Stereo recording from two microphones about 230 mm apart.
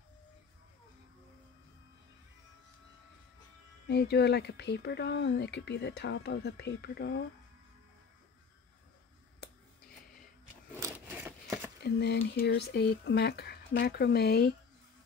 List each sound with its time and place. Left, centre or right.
3.8 s speech: left
10.8 s a sound: centre
11.8 s speech: left